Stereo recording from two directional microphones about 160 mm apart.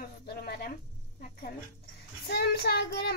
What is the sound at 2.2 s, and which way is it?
Child singing, 90° left.